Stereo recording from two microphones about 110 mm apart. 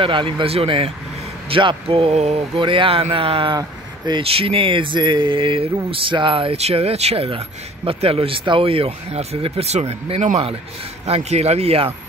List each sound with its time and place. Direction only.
0.0 s speech: 50° right (ahead or behind)
1.5 s speech: 50° right (ahead or behind)
3.5 s a sound: 40° right (ahead or behind)
4.2 s speech: 60° right (ahead or behind)